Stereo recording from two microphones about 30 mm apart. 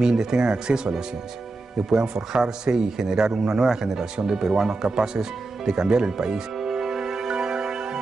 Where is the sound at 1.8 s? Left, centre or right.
Centre.